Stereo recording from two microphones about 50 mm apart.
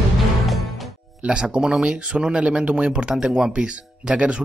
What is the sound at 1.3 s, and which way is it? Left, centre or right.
Speech, centre.